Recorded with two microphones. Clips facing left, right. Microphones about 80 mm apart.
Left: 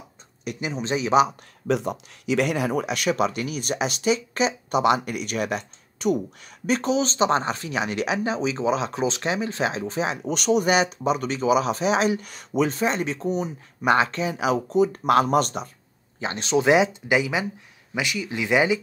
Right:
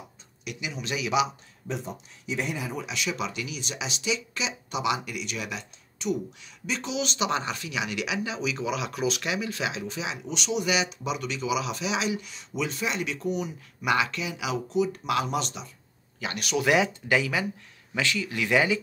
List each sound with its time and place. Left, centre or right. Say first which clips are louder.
0.5 s speech: left 7 dB; left
1.7 s speech: left 10 dB; left
16.2 s speech: left 6 dB; left